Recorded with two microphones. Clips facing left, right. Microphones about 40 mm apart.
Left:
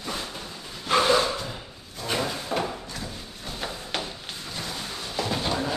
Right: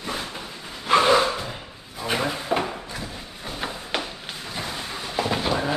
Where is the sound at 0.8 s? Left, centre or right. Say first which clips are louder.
Right 3 dB; centre.